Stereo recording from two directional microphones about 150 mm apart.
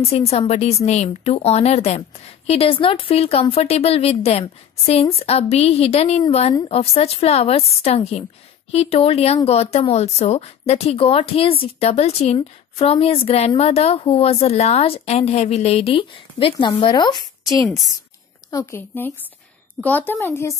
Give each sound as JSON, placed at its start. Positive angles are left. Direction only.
{"t": 0.1, "sound": "a woman's voice", "side_deg": 40}
{"t": 17.6, "sound": "a woman's voice", "side_deg": 0}
{"t": 18.5, "sound": "speech", "side_deg": 25}
{"t": 18.8, "sound": "speech", "side_deg": 10}